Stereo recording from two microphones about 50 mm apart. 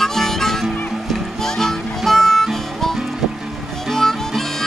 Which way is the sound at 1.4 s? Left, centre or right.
Centre.